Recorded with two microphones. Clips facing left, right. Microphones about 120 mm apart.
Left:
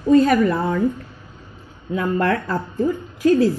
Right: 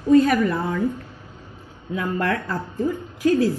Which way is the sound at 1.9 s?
40° left (ahead or behind).